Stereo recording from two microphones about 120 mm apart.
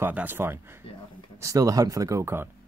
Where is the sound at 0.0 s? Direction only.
15° right (ahead or behind).